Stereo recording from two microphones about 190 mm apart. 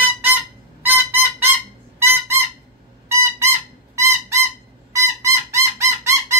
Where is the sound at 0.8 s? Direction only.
10° right (ahead or behind).